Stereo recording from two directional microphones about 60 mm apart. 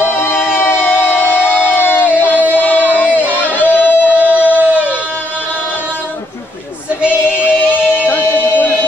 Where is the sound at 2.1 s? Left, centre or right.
Left.